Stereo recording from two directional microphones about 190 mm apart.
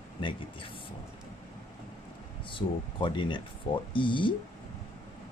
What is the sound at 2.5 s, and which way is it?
Speech, 25° left (ahead or behind).